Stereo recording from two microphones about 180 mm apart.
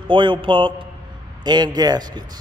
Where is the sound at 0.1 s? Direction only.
25° right (ahead or behind).